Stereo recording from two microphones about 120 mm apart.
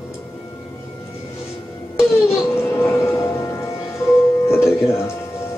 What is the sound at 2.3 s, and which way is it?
Music, 20° left (ahead or behind).